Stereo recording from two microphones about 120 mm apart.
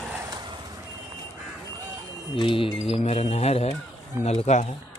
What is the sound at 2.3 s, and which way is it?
Mantra, 45° left (ahead or behind).